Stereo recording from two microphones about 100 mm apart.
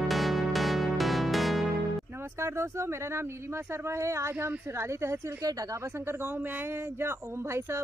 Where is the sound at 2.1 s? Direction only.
25° right (ahead or behind).